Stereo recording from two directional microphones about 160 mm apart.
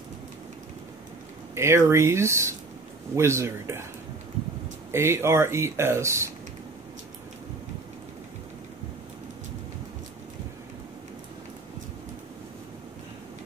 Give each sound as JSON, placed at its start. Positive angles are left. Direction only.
{"t": 1.5, "sound": "speech", "side_deg": -15}
{"t": 4.9, "sound": "speech", "side_deg": -15}